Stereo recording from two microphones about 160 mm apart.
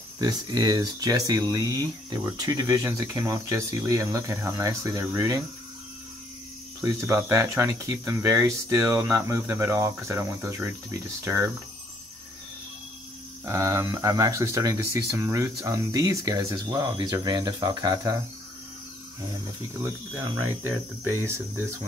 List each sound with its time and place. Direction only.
0.2 s speech: 25° right (ahead or behind)
6.8 s speech: 15° right (ahead or behind)
13.5 s speech: 20° right (ahead or behind)